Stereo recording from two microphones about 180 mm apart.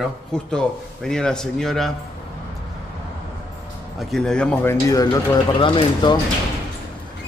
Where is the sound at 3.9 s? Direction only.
Centre (ahead or behind); by 6.1 s 25° left (ahead or behind).